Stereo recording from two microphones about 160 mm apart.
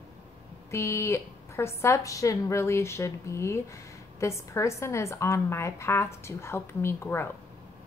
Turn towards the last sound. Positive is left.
turn(degrees=15)  # may be behind; listen again after turning